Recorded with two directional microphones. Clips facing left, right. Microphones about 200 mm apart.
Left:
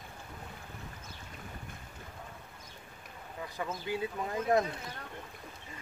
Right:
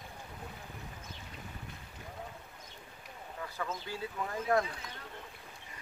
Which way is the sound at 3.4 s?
15° left (ahead or behind).